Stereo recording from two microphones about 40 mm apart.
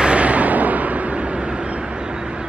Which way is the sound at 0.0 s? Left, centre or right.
Right.